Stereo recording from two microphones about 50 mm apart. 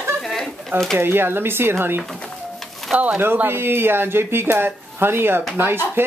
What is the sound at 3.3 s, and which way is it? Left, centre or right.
Speech, right.